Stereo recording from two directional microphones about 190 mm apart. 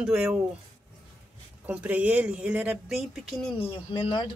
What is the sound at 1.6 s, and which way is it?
Speech, 10° right (ahead or behind).